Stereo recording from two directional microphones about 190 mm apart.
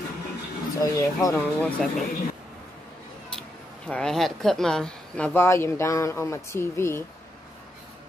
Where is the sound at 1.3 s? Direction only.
5° left (ahead or behind).